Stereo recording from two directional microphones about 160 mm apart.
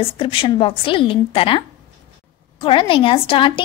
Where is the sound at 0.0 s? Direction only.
35° left (ahead or behind).